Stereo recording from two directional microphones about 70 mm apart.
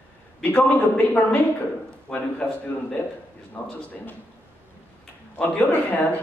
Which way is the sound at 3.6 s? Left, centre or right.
Centre.